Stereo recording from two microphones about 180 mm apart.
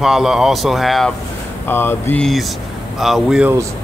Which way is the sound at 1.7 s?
10° left (ahead or behind).